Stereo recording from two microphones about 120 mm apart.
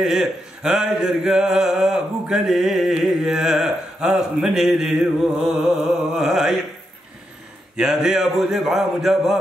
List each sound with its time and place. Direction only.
0.0 s speech: 5° right (ahead or behind)
7.7 s speech: 5° right (ahead or behind)